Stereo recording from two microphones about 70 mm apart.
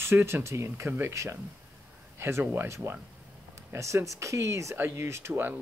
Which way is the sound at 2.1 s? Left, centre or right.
Right.